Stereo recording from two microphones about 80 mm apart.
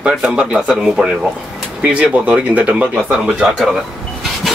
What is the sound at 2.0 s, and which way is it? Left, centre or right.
Speech, centre.